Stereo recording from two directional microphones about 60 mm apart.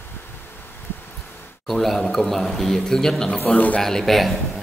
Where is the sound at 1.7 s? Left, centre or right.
Centre.